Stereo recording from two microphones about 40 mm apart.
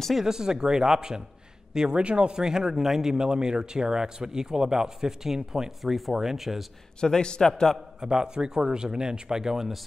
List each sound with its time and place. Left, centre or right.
0.1 s speech: centre
2.0 s speech: right; by 6.6 s centre
7.0 s a man's voice: left
8.0 s speech: centre